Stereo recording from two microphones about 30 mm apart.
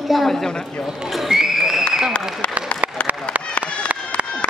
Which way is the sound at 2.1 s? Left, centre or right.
Left.